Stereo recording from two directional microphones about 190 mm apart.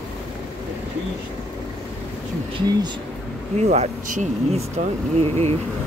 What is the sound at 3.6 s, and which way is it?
Speech, 35° right (ahead or behind).